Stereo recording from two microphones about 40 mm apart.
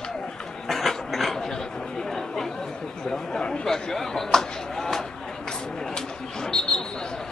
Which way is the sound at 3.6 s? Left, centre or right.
Centre.